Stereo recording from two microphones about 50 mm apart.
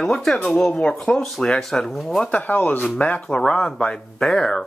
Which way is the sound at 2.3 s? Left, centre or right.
Left.